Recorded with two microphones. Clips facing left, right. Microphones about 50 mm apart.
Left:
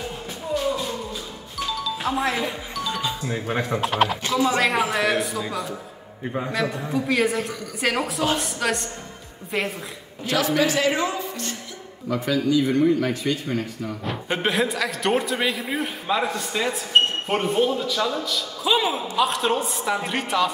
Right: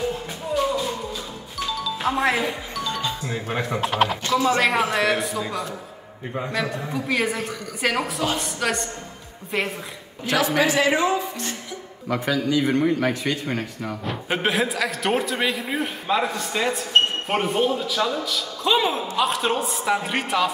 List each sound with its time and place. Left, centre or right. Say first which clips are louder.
1.7 s music: even; centre
2.0 s speech: right 3 dB; centre
2.4 s a man's voice: right 1 dB; centre
4.6 s a man's voice: right 1 dB; centre
10.3 s speech: right 1 dB; right
12.3 s a man's voice: left 2 dB; right
12.6 s a man's voice: left 1 dB; right
14.0 s a man's voice: right 1 dB; centre